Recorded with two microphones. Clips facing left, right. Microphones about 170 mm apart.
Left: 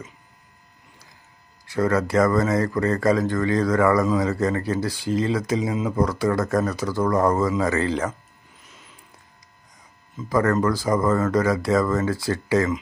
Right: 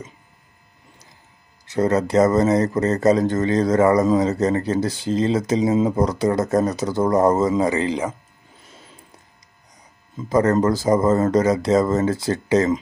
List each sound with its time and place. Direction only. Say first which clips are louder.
1.7 s speech: right 2 dB; 20° right (ahead or behind)
8.6 s a sound: right 4 dB; 30° right (ahead or behind)
10.1 s speech: right 3 dB; 25° right (ahead or behind)